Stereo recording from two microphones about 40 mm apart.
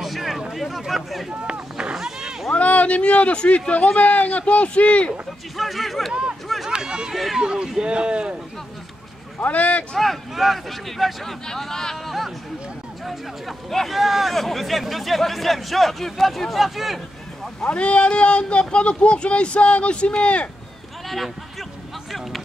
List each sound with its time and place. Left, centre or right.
0.0 s a sound: centre
0.6 s speech: centre
1.3 s run: right
2.0 s a sound: centre
2.5 s a man's voice: left
5.6 s speech: centre
6.7 s run: right
7.1 s speech: centre
7.3 s speech: right
9.4 s a man's voice: left
9.9 s speech: centre
13.0 s speech: centre
17.6 s speech: left